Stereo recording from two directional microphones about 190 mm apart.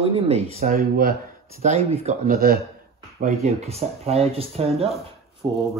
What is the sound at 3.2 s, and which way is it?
Speech, 35° right (ahead or behind).